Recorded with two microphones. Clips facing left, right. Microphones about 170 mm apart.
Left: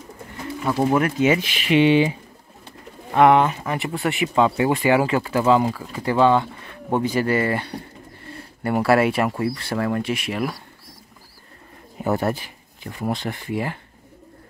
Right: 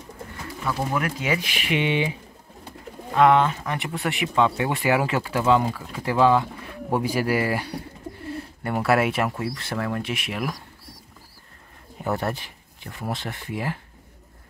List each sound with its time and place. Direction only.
0.7 s speech: 25° left (ahead or behind)
3.2 s speech: 15° left (ahead or behind)
3.6 s speech: centre (ahead or behind)
12.0 s speech: 5° left (ahead or behind)